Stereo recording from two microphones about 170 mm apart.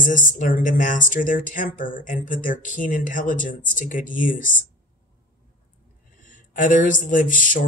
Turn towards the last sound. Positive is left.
turn(degrees=50)  # may be behind; listen again after turning